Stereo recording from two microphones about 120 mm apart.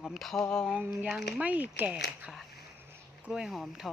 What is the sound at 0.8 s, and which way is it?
Speech, 15° right (ahead or behind).